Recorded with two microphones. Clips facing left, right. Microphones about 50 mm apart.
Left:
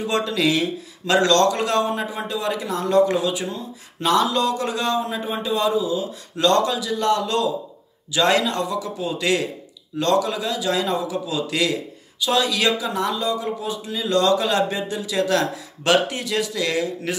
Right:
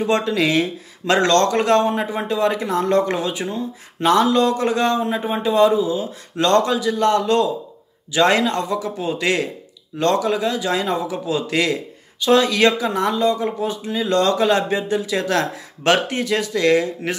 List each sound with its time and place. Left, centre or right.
0.0 s speech: right